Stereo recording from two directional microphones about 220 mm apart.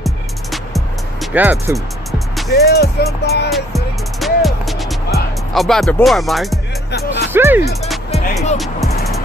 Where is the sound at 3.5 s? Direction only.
Centre (ahead or behind).